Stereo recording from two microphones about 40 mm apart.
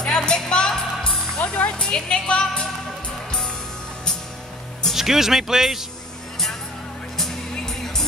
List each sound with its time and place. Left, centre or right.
0.0 s music: left
4.9 s speech: centre
7.2 s music: centre